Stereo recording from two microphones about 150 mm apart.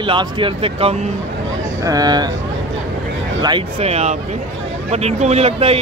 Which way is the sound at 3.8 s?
45° right (ahead or behind).